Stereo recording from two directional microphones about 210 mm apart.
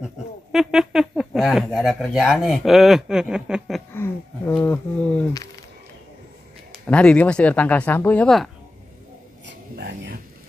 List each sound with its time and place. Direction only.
0.0 s speech: 5° right (ahead or behind)
3.9 s a sound: 10° left (ahead or behind)
6.9 s speech: 5° left (ahead or behind)